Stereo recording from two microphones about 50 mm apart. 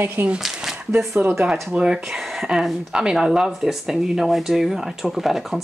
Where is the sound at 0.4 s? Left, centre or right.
Centre.